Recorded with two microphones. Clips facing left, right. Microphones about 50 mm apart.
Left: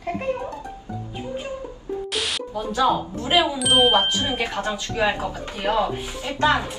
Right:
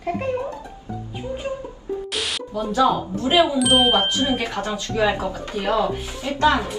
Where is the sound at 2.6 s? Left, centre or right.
Left.